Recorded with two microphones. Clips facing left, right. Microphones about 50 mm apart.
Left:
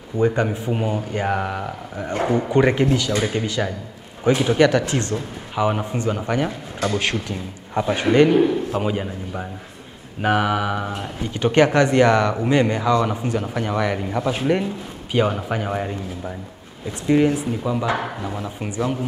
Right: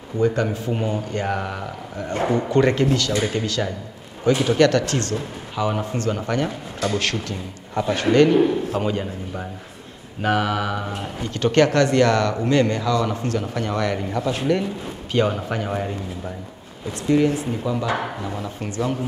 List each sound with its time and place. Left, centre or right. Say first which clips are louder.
0.2 s speech: left 1 dB; centre
3.4 s speech: left 1 dB; centre
11.3 s speech: left 1 dB; centre
14.5 s speech: left 1 dB; centre